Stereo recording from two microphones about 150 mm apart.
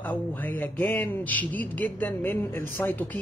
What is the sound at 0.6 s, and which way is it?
Speech, 10° left (ahead or behind).